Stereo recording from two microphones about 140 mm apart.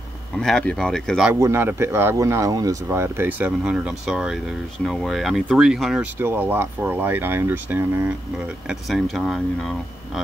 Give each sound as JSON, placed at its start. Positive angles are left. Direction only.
{"t": 0.4, "sound": "speech", "side_deg": 5}
{"t": 1.3, "sound": "speech", "side_deg": -15}
{"t": 6.1, "sound": "speech", "side_deg": -15}
{"t": 8.6, "sound": "speech", "side_deg": 0}